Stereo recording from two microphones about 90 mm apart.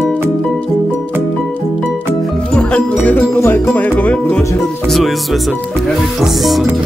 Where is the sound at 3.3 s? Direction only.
25° left (ahead or behind).